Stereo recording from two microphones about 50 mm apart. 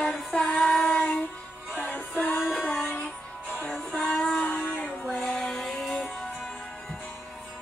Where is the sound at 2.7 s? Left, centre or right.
Centre.